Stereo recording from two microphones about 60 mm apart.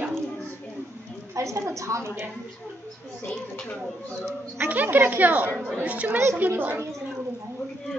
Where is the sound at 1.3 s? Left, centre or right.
Right.